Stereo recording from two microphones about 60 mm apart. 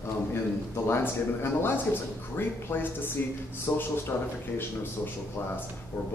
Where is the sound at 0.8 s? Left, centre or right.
Left.